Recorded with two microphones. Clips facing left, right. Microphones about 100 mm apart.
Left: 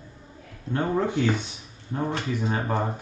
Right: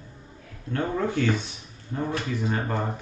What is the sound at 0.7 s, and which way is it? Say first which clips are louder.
Speech: left 2 dB; 15° left (ahead or behind).